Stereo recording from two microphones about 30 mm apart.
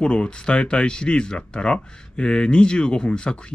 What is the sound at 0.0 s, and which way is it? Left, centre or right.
Speech, left.